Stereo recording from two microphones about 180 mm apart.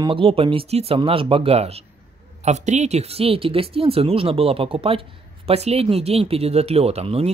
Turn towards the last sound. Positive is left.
turn(degrees=-35)  # may be behind; listen again after turning